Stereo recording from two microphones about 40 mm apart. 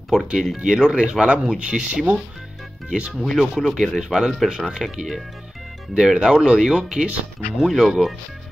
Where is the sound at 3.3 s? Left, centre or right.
Centre.